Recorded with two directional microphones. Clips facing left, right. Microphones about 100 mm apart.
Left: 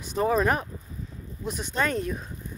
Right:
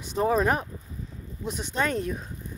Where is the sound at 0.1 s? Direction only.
25° right (ahead or behind).